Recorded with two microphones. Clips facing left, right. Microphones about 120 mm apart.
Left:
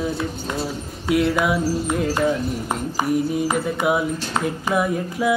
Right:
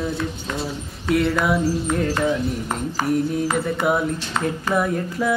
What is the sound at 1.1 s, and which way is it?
Mantra, 5° left (ahead or behind).